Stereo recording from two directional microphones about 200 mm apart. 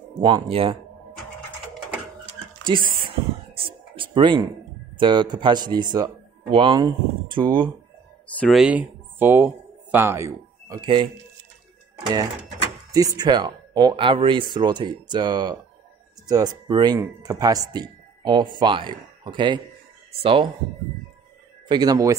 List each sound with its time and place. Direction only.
0.2 s speech: 25° right (ahead or behind)
2.9 s a sound: 25° right (ahead or behind)
4.9 s speech: 20° right (ahead or behind)
8.3 s speech: 5° left (ahead or behind); by 11.1 s 25° right (ahead or behind)
12.9 s speech: 20° right (ahead or behind)
21.6 s speech: 20° right (ahead or behind)